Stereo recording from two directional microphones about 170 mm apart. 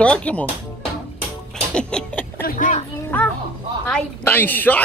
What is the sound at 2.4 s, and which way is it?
Speech, 50° left (ahead or behind).